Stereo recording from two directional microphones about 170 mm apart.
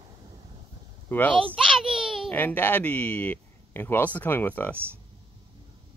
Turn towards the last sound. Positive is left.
turn(degrees=10)  # may be behind; listen again after turning